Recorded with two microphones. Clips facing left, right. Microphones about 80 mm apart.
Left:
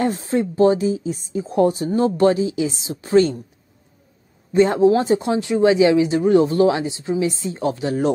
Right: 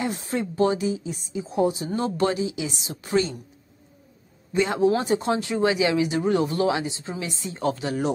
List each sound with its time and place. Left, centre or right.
0.3 s speech: left
1.9 s speech: left
4.6 s speech: left